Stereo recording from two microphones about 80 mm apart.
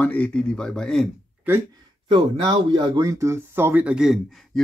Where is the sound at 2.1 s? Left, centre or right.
Right.